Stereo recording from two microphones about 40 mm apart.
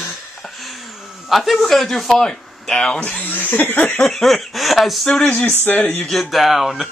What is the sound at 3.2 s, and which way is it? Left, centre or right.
Speech, left.